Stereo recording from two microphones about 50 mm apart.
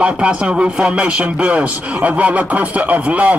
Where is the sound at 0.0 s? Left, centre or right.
Centre.